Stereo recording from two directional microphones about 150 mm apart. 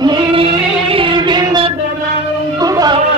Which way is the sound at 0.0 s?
30° right (ahead or behind).